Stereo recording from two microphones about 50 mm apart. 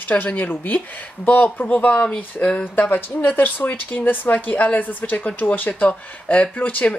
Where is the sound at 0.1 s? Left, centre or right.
Left.